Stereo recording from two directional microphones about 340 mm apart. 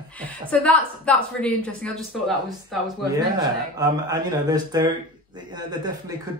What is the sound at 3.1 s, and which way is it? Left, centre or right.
Speech, centre.